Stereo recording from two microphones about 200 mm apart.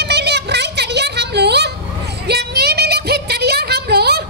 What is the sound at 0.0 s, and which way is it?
Music, 55° right (ahead or behind).